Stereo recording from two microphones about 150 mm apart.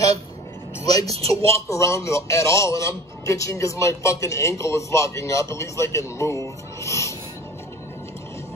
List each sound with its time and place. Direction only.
1.0 s a man's voice: 45° right (ahead or behind)
1.7 s a man's voice: 20° left (ahead or behind)